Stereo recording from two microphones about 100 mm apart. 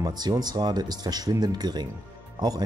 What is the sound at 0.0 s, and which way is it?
Speech, 40° right (ahead or behind).